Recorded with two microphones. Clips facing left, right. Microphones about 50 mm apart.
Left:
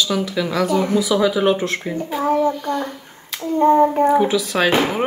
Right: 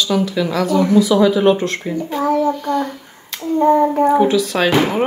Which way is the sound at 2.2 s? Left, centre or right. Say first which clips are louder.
Right 1 dB; left.